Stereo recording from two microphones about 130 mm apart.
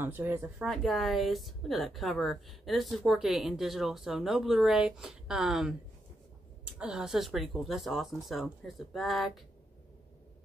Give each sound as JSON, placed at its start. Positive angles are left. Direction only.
{"t": 0.0, "sound": "speech", "side_deg": -15}
{"t": 0.7, "sound": "a woman's voice", "side_deg": 0}
{"t": 6.8, "sound": "a woman's voice", "side_deg": -5}